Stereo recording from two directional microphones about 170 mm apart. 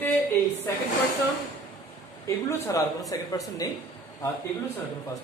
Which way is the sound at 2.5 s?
20° left (ahead or behind).